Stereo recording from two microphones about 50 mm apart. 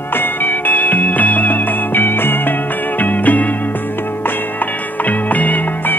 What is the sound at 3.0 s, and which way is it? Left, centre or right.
Music, left.